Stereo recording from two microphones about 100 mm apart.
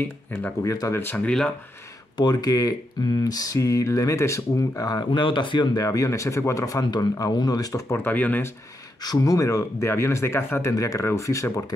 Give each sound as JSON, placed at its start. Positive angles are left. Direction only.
{"t": 0.7, "sound": "speech", "side_deg": 35}
{"t": 1.1, "sound": "speech", "side_deg": 10}
{"t": 2.1, "sound": "speech", "side_deg": 45}
{"t": 5.8, "sound": "speech", "side_deg": 35}
{"t": 7.9, "sound": "speech", "side_deg": 20}
{"t": 9.0, "sound": "speech", "side_deg": 40}